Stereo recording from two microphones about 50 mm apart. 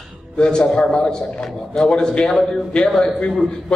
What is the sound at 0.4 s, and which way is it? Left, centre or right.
Speech, centre.